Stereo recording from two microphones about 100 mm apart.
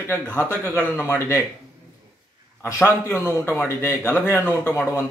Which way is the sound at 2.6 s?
25° left (ahead or behind).